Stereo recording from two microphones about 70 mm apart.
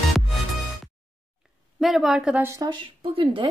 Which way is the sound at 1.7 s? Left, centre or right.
Centre.